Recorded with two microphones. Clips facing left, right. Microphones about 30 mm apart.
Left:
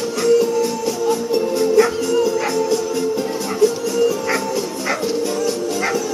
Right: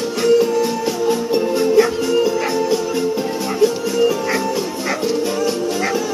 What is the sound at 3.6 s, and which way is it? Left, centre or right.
Music, centre.